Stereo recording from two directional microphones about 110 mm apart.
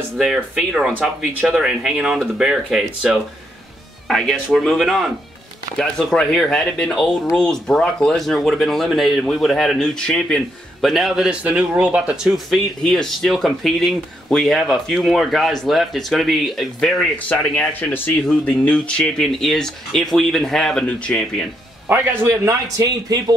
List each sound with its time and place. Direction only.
1.0 s speech: 10° right (ahead or behind)
17.3 s speech: 15° left (ahead or behind)
21.8 s a man's voice: 20° right (ahead or behind)
22.3 s speech: 30° right (ahead or behind)